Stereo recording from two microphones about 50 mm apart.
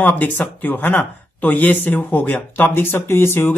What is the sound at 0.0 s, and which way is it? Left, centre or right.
Speech, left.